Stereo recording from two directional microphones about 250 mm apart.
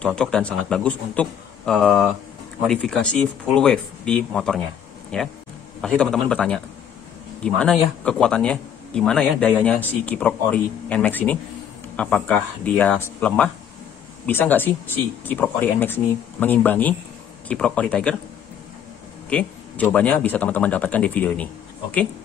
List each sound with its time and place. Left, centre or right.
0.0 s speech: centre
19.2 s speech: centre